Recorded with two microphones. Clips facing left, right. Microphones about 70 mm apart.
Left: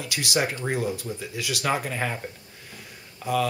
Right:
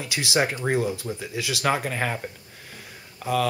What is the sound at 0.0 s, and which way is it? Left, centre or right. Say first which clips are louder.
Speech: right 2 dB; right.